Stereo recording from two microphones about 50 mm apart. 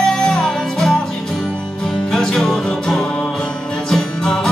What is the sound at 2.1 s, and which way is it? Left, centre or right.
Music, centre.